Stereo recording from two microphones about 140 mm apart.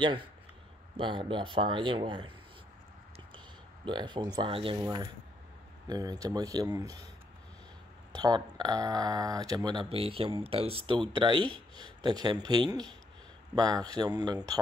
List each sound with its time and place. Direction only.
0.0 s speech: 35° right (ahead or behind)
3.8 s speech: 35° right (ahead or behind)
5.9 s speech: 25° right (ahead or behind)
8.1 s speech: 30° right (ahead or behind)